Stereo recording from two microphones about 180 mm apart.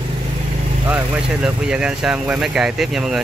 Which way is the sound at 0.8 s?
10° right (ahead or behind).